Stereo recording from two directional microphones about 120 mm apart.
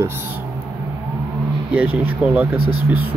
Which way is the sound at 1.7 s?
10° right (ahead or behind).